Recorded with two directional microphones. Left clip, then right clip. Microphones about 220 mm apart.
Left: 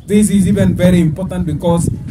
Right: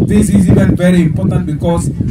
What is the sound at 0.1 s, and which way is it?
A man's voice, 25° left (ahead or behind).